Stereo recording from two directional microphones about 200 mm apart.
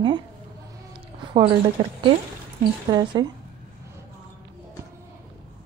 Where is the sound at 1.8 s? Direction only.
20° right (ahead or behind).